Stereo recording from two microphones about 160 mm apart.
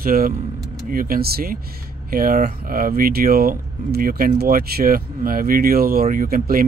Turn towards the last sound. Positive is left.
turn(degrees=-65)  # may be behind; listen again after turning